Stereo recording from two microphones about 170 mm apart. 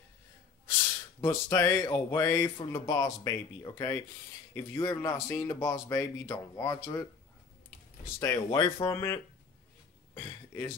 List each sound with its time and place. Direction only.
1.2 s speech: 15° left (ahead or behind)
8.2 s speech: 25° left (ahead or behind)
10.2 s a sound: 15° left (ahead or behind)